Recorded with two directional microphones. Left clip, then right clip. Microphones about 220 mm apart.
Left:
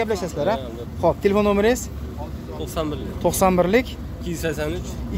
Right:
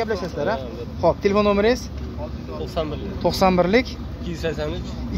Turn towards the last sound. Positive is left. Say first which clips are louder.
# left 1 dB
turn(degrees=45)  # may be behind; listen again after turning